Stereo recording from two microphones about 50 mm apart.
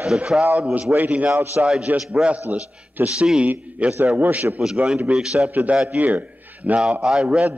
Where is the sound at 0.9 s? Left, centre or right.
Right.